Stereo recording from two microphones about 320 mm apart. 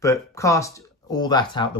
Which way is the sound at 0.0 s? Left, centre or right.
Centre.